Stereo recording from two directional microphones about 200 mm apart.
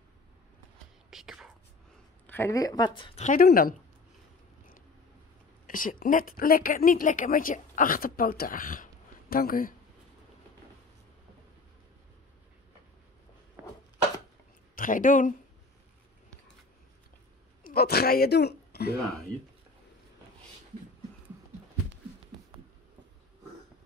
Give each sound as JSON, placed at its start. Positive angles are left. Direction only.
{"t": 1.1, "sound": "whispering", "side_deg": 0}
{"t": 2.2, "sound": "speech", "side_deg": 10}
{"t": 3.3, "sound": "speech", "side_deg": 45}
{"t": 5.7, "sound": "speech", "side_deg": 45}
{"t": 14.8, "sound": "speech", "side_deg": 40}
{"t": 17.6, "sound": "a woman's voice", "side_deg": 50}